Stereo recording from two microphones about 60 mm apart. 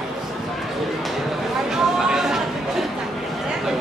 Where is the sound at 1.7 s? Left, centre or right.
Centre.